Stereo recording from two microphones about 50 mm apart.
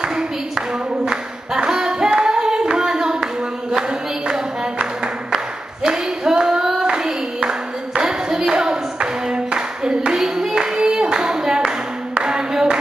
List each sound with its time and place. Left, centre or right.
0.1 s a sound: centre
2.0 s clapping: centre
4.3 s music: centre
5.9 s a sound: centre
6.6 s hands: centre
7.3 s clapping: centre
10.1 s clapping: centre